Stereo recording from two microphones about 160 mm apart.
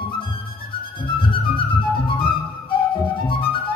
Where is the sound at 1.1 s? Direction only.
35° left (ahead or behind).